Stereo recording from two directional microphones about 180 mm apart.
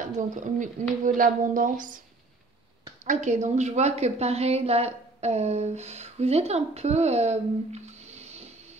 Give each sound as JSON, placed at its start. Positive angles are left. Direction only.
{"t": 0.0, "sound": "a woman's voice", "side_deg": -45}
{"t": 3.1, "sound": "a woman's voice", "side_deg": -40}